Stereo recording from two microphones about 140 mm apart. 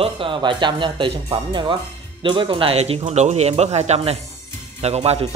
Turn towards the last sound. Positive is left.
turn(degrees=-45)  # may be behind; listen again after turning